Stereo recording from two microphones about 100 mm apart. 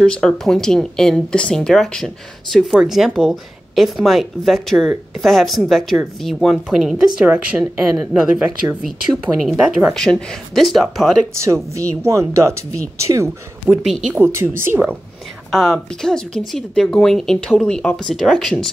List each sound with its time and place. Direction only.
0.0 s speech: 10° left (ahead or behind)
11.3 s speech: 30° right (ahead or behind)
13.7 s speech: 15° right (ahead or behind)
14.1 s speech: 25° right (ahead or behind)
15.5 s speech: 5° left (ahead or behind)